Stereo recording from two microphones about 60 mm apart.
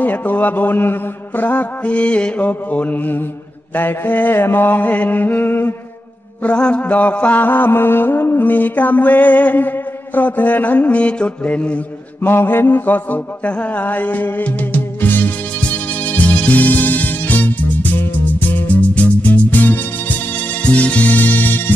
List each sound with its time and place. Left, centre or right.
0.0 s music: left
3.7 s mantra: left
6.4 s music: centre
12.2 s mantra: left